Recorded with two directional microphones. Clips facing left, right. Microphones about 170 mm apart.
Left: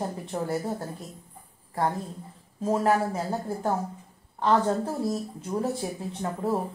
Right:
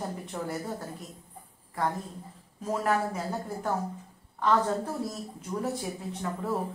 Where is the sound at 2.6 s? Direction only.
30° left (ahead or behind).